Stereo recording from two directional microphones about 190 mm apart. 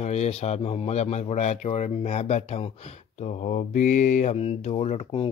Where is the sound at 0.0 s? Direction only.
35° left (ahead or behind).